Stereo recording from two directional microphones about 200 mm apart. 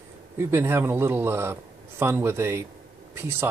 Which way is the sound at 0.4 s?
10° right (ahead or behind).